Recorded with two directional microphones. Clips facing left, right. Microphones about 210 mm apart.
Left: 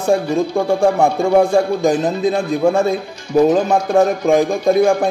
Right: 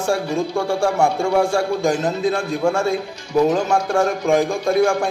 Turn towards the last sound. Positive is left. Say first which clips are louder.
# left 4 dB
turn(degrees=20)  # may be behind; listen again after turning